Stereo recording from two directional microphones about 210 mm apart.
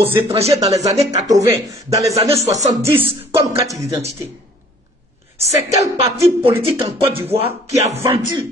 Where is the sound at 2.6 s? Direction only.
35° right (ahead or behind).